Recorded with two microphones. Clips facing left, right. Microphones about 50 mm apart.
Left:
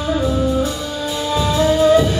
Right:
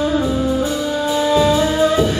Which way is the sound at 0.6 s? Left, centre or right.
Right.